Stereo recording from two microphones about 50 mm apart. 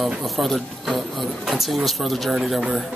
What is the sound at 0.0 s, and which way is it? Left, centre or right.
Speech, centre.